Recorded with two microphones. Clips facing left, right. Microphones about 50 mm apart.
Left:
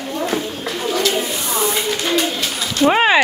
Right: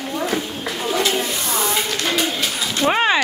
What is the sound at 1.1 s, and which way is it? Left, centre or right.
Speech, centre.